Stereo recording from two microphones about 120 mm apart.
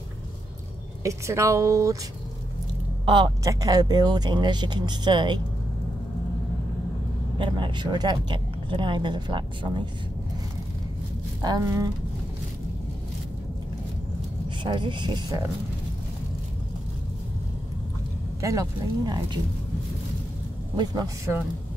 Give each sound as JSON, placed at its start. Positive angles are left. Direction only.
{"t": 1.0, "sound": "speech", "side_deg": -25}
{"t": 3.4, "sound": "speech", "side_deg": -30}
{"t": 7.3, "sound": "speech", "side_deg": -45}
{"t": 11.4, "sound": "speech", "side_deg": -30}
{"t": 14.6, "sound": "speech", "side_deg": -40}
{"t": 18.4, "sound": "speech", "side_deg": -25}
{"t": 20.7, "sound": "speech", "side_deg": -35}